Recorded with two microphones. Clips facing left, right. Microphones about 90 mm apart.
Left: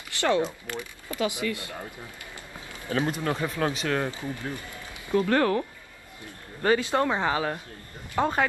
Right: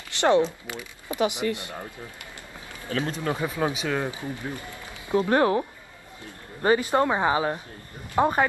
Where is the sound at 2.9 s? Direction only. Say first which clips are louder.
Left 1 dB; 25° left (ahead or behind).